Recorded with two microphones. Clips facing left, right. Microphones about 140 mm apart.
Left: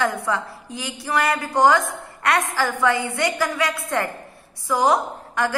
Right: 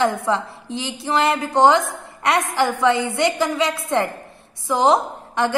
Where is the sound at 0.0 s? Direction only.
25° right (ahead or behind).